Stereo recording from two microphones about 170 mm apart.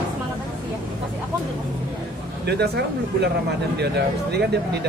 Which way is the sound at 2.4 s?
75° right (ahead or behind).